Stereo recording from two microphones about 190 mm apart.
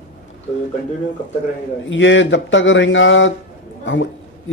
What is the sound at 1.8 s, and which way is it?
A man's voice, 75° left (ahead or behind).